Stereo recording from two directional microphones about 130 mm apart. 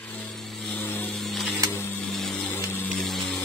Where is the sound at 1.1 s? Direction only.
Centre (ahead or behind).